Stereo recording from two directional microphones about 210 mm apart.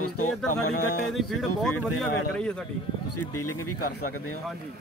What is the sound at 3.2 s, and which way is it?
Speech, 90° left.